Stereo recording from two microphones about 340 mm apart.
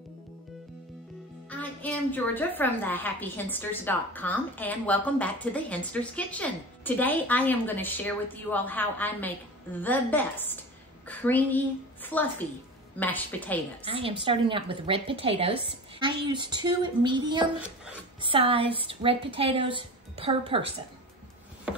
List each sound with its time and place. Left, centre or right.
1.5 s a woman's voice: centre
13.8 s a woman's voice: centre